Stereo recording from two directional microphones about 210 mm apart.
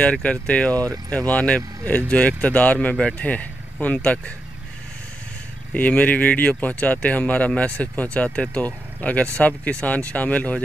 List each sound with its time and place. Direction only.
0.0 s speech: 5° left (ahead or behind)
5.8 s speech: 5° left (ahead or behind)